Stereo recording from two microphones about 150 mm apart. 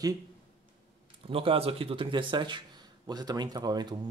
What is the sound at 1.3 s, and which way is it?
Speech, 40° right (ahead or behind).